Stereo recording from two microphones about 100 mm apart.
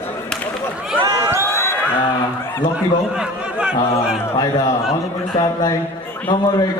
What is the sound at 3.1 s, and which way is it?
Speech, 10° right (ahead or behind).